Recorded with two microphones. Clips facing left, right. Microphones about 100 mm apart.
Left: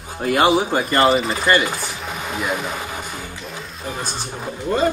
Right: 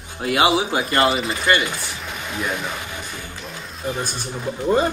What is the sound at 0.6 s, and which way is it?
Speech, 45° left (ahead or behind).